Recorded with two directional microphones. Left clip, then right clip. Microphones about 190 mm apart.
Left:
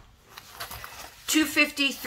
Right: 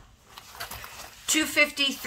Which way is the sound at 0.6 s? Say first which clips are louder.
Even; 5° right (ahead or behind).